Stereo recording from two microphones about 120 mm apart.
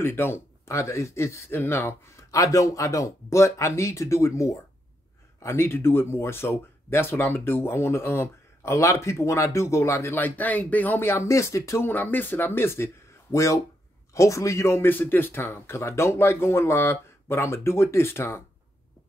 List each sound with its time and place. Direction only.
0.0 s speech: 20° left (ahead or behind)